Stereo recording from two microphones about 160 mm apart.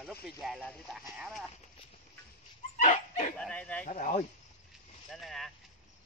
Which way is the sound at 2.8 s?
50° left (ahead or behind).